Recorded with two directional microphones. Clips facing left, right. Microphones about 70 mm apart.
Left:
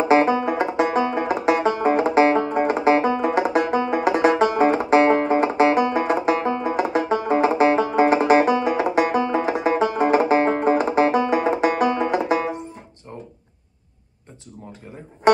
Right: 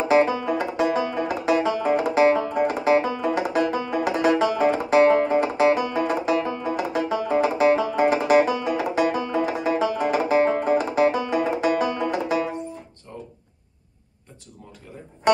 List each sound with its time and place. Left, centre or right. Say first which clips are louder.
0.1 s banjo: left 1 dB; left